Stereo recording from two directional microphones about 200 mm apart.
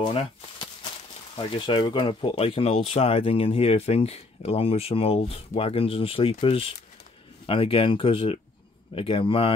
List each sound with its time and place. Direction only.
0.0 s speech: 25° left (ahead or behind)